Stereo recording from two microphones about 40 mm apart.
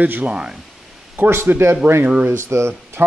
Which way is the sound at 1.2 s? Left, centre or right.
Right.